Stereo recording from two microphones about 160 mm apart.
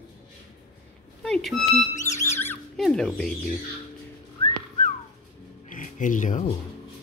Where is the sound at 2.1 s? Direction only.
15° left (ahead or behind).